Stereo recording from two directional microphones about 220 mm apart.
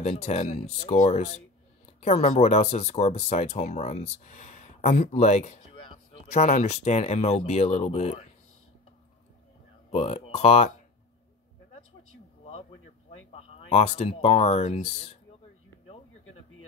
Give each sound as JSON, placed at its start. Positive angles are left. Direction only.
{"t": 0.0, "sound": "speech", "side_deg": 30}
{"t": 9.8, "sound": "speech", "side_deg": 30}
{"t": 13.3, "sound": "speech", "side_deg": 25}